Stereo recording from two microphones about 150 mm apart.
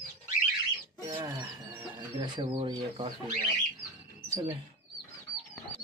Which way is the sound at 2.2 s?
35° right (ahead or behind).